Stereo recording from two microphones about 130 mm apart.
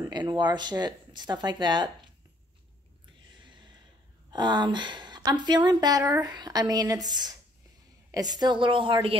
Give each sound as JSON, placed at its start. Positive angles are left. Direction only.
{"t": 0.1, "sound": "speech", "side_deg": -35}
{"t": 4.3, "sound": "speech", "side_deg": -35}